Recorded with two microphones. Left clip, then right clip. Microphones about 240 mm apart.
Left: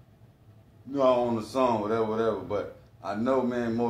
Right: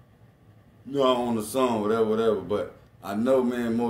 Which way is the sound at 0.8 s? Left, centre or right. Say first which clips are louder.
Even; right.